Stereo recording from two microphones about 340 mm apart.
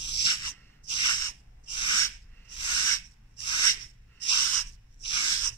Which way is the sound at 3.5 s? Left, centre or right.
Centre.